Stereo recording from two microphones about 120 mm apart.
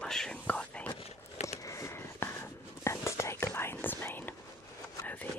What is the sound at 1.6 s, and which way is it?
Whispering, 25° left (ahead or behind).